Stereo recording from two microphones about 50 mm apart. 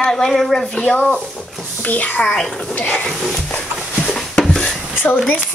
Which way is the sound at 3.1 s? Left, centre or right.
Centre.